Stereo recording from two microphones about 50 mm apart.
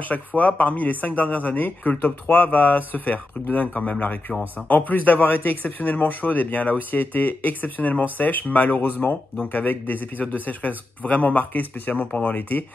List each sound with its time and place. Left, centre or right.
0.1 s speech: left